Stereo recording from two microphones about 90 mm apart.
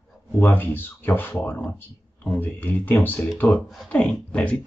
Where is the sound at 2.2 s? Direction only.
20° left (ahead or behind).